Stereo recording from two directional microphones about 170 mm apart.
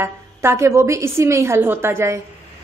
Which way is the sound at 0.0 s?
15° right (ahead or behind).